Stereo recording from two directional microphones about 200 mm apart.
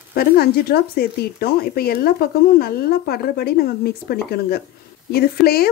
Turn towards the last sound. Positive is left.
turn(degrees=50)  # may be behind; listen again after turning